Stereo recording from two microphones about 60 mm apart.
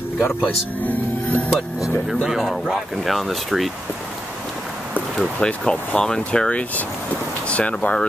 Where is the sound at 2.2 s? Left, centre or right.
Centre.